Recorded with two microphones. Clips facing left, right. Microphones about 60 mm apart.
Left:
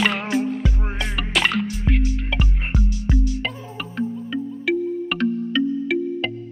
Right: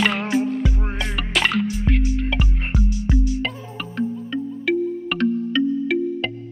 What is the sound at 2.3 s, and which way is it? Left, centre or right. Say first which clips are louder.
Music: right 1 dB; right.